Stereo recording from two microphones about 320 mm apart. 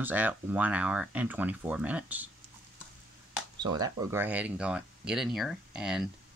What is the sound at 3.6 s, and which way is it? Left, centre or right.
Speech, centre.